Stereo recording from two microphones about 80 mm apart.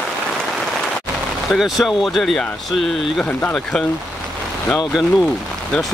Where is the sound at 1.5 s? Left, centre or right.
Centre.